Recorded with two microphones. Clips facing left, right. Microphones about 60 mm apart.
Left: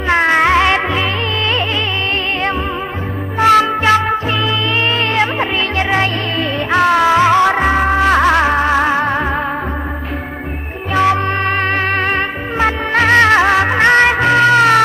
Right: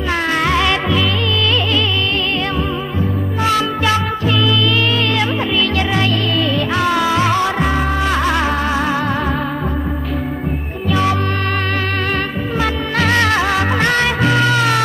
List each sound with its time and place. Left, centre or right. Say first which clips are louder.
0.1 s music: left 6 dB; left
3.3 s music: left 7 dB; left
5.1 s music: left 2 dB; left
10.9 s music: left 3 dB; left
12.5 s music: left 5 dB; left